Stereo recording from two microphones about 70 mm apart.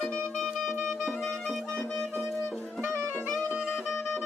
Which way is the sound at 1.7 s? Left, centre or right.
Centre.